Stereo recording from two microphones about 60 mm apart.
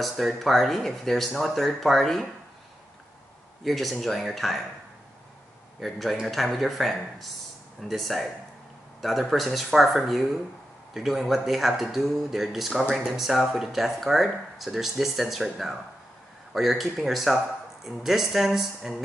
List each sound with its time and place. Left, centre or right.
0.0 s speech: centre
3.6 s speech: centre
5.8 s speech: centre